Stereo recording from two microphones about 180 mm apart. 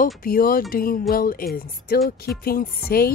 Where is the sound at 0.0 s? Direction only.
55° left (ahead or behind).